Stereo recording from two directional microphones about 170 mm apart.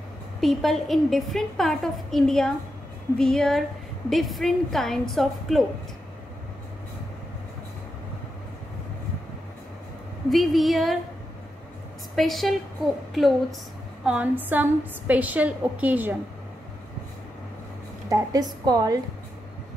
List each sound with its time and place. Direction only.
0.4 s a woman's voice: centre (ahead or behind)
10.3 s a woman's voice: centre (ahead or behind)
12.2 s a woman's voice: centre (ahead or behind)
18.1 s a woman's voice: 20° right (ahead or behind)